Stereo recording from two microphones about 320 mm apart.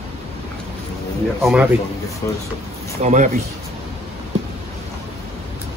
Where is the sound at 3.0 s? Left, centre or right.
Right.